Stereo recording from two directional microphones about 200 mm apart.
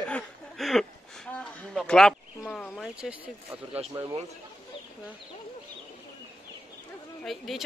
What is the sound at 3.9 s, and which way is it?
Speech, 20° right (ahead or behind).